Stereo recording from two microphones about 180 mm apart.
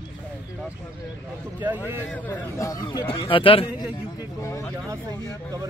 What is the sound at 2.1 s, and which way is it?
A man's voice, 10° left (ahead or behind).